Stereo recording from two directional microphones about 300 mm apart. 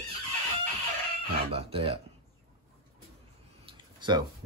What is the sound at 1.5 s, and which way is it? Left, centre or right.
Speech, centre.